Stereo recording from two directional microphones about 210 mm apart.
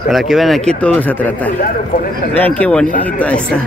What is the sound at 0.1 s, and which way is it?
Speech, centre (ahead or behind).